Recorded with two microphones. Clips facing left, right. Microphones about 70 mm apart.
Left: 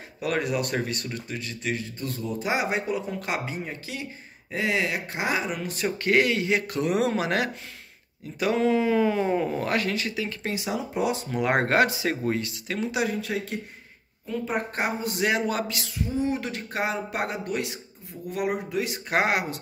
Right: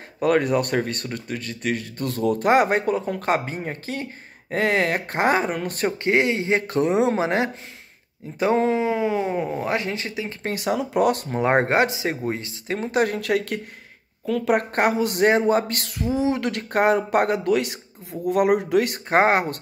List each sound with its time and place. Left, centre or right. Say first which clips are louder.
0.2 s speech: right 7 dB; right
6.0 s speech: right 1 dB; right
7.0 s speech: right 4 dB; right
10.5 s speech: right 9 dB; right
11.2 s speech: right 4 dB; right
12.9 s speech: right 8 dB; right
14.3 s speech: right 7 dB; right
15.2 s speech: right 7 dB; right
15.7 s speech: right 5 dB; right
17.4 s a man's voice: right 8 dB; right
18.2 s speech: right 9 dB; right
19.0 s speech: right 4 dB; right